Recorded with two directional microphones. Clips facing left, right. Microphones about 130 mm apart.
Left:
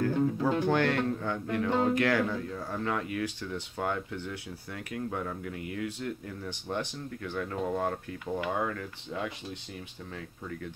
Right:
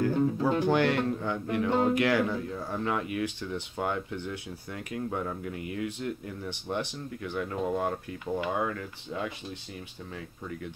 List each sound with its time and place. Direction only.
0.0 s speech: 10° right (ahead or behind)